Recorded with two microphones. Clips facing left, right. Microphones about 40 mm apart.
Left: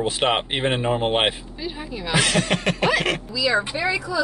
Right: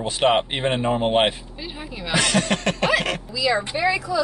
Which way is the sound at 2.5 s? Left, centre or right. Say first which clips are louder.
Even; centre.